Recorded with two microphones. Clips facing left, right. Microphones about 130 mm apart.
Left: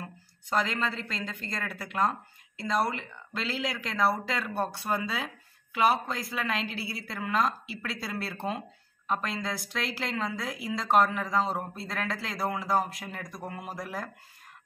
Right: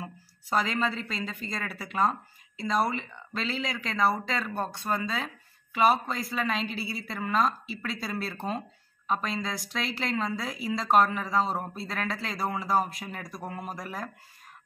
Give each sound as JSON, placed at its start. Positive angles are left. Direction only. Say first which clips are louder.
{"t": 0.0, "sound": "a woman's voice", "louder": "right 2 dB", "side_deg": -5}